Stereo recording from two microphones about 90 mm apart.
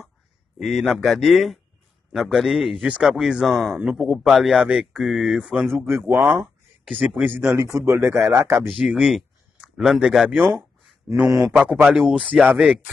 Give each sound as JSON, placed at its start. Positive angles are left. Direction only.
{"t": 0.6, "sound": "speech", "side_deg": 0}
{"t": 3.4, "sound": "speech", "side_deg": 0}
{"t": 7.2, "sound": "speech", "side_deg": -25}
{"t": 8.6, "sound": "speech", "side_deg": -5}
{"t": 11.2, "sound": "speech", "side_deg": -40}
{"t": 11.5, "sound": "speech", "side_deg": -10}